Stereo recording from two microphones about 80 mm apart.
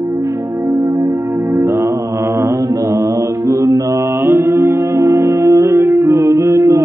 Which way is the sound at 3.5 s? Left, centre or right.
Right.